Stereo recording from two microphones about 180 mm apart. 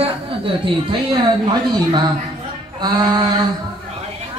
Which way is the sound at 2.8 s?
20° right (ahead or behind).